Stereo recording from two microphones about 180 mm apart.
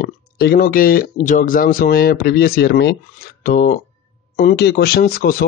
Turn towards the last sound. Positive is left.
turn(degrees=55)  # may be behind; listen again after turning